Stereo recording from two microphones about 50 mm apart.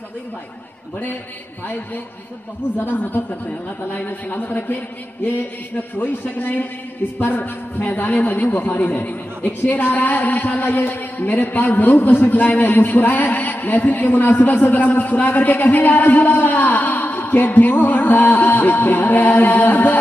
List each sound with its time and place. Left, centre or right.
2.8 s a man's voice: left
5.8 s a man's voice: left